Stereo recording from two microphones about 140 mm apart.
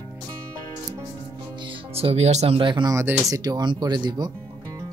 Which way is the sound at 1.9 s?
45° right (ahead or behind).